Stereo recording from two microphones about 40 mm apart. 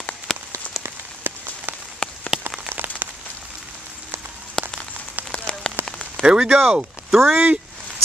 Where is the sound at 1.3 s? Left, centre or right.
Right.